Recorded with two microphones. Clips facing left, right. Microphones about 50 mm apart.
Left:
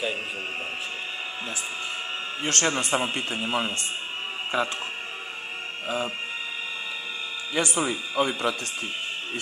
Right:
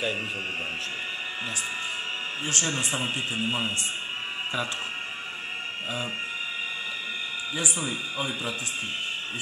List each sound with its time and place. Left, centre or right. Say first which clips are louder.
2.4 s speech: left 5 dB; left
4.5 s speech: left 5 dB; left
7.5 s speech: left 7 dB; left